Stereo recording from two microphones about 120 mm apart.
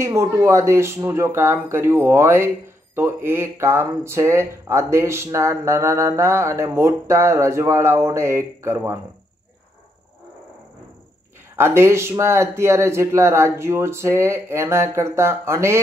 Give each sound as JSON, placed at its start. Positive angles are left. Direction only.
{"t": 0.0, "sound": "speech", "side_deg": -25}
{"t": 11.5, "sound": "speech", "side_deg": -20}